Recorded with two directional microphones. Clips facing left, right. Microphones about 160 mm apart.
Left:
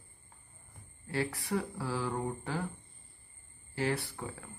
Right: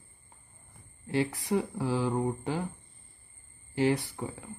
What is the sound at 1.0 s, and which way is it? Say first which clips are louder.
Speech: right 5 dB; 20° right (ahead or behind).